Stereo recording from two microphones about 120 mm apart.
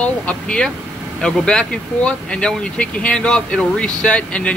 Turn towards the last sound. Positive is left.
turn(degrees=10)  # may be behind; listen again after turning